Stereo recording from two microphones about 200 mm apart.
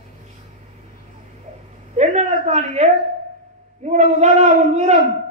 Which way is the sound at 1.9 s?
35° right (ahead or behind).